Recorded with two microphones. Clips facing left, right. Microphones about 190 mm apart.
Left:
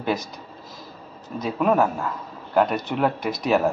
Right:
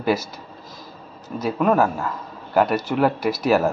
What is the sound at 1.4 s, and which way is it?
A man's voice, centre (ahead or behind).